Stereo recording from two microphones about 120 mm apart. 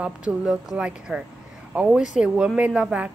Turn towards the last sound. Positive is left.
turn(degrees=-10)  # may be behind; listen again after turning